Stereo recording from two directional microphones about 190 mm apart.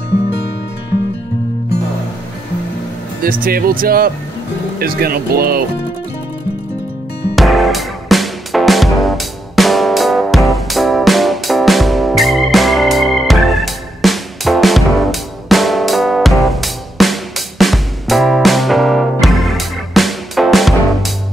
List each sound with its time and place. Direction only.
3.2 s speech: 50° right (ahead or behind)
7.3 s music: centre (ahead or behind)